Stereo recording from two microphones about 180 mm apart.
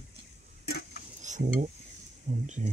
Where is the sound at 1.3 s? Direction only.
40° right (ahead or behind).